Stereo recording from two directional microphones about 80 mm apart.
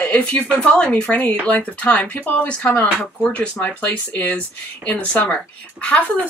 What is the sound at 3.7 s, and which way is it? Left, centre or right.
Speech, left.